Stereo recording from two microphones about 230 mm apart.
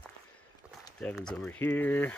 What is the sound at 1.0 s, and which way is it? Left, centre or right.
Speech, centre.